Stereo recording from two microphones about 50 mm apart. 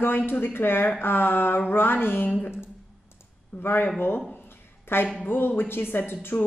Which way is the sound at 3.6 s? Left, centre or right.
Left.